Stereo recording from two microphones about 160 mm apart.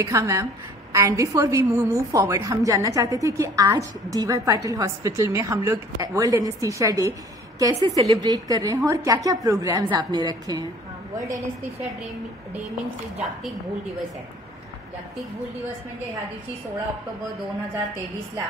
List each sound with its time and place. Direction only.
0.0 s a woman's voice: 20° right (ahead or behind)